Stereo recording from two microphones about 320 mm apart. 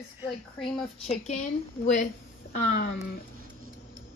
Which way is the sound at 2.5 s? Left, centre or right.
Left.